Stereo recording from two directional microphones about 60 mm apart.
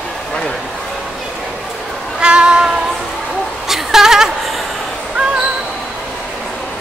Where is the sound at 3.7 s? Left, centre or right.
Centre.